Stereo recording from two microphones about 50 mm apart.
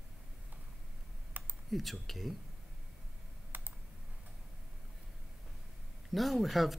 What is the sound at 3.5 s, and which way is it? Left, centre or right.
Computer keyboard, right.